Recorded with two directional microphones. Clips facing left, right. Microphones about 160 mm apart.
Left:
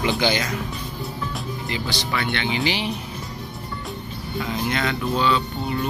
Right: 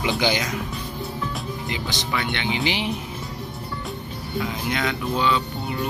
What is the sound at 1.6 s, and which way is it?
Speech, 20° right (ahead or behind).